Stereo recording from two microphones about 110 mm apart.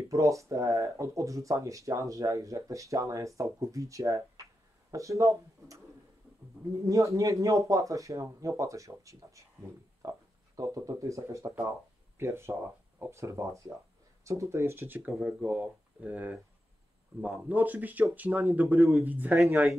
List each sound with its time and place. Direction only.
0.1 s speech: 30° right (ahead or behind)
6.9 s speech: 30° right (ahead or behind)